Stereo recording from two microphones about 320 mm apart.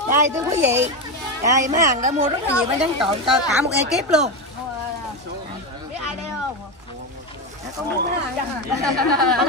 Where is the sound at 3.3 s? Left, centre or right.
Centre.